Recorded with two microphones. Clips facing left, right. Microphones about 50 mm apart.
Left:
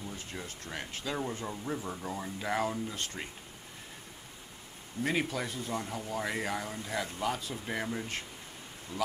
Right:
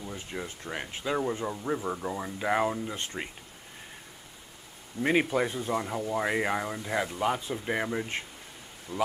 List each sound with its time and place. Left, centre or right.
0.0 s speech: right
5.0 s speech: right
8.9 s speech: right